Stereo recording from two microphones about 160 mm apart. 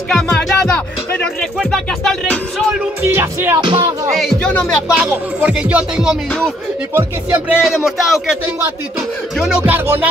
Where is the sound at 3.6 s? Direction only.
30° right (ahead or behind).